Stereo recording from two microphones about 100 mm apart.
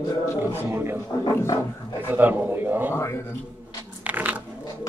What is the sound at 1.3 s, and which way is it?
Speech, 30° left (ahead or behind).